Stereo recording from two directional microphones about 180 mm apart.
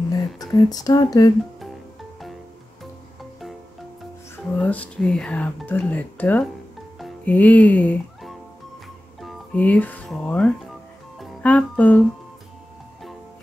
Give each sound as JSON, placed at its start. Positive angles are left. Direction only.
{"t": 0.1, "sound": "speech", "side_deg": 20}
{"t": 4.6, "sound": "speech", "side_deg": 5}
{"t": 7.0, "sound": "music", "side_deg": 5}